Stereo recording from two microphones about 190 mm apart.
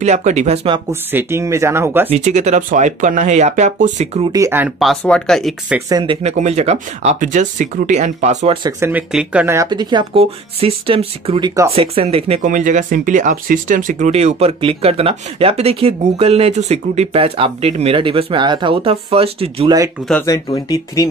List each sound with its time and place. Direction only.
0.0 s speech: 35° right (ahead or behind)
1.1 s speech: 15° right (ahead or behind)
2.0 s speech: 35° right (ahead or behind)
4.3 s speech: 15° right (ahead or behind); by 5.8 s centre (ahead or behind)
5.9 s speech: 20° right (ahead or behind)
6.2 s speech: 35° right (ahead or behind)
8.6 s speech: 10° right (ahead or behind); by 12.4 s 30° right (ahead or behind)
12.4 s speech: 40° right (ahead or behind)
20.2 s speech: 20° left (ahead or behind)